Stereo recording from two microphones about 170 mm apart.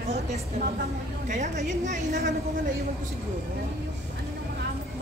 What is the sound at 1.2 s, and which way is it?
A woman's voice, 45° right (ahead or behind).